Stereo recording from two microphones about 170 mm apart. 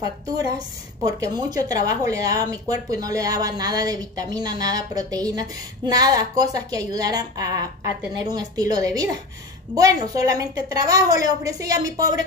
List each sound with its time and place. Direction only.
0.0 s a woman's voice: 20° right (ahead or behind)